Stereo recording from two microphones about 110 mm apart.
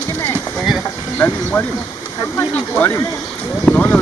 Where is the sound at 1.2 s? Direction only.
15° left (ahead or behind).